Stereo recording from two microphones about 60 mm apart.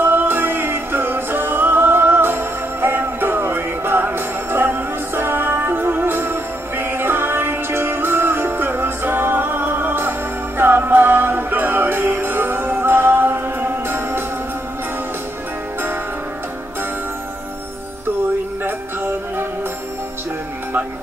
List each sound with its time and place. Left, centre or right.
0.0 s music: right
18.6 s music: right